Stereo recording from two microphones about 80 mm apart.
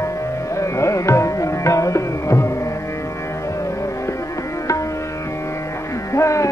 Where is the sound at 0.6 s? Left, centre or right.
Left.